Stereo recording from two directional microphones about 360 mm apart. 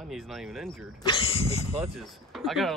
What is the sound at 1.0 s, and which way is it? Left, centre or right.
Speech, centre.